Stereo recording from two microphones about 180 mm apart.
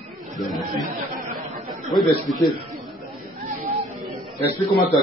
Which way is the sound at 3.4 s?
50° right (ahead or behind).